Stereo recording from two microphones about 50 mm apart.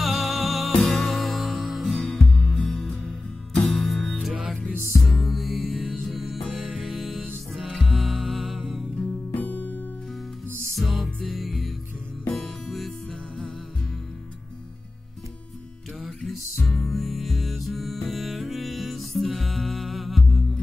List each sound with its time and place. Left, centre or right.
0.0 s music: centre
2.0 s music: centre
4.3 s music: centre
8.9 s music: left
10.7 s music: centre
16.6 s music: centre